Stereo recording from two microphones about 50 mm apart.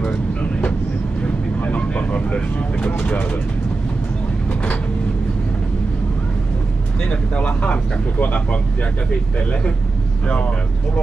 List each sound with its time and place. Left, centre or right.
0.4 s train: left
1.2 s vehicle: left
2.9 s speech: left
7.1 s speech: left
10.2 s speech: left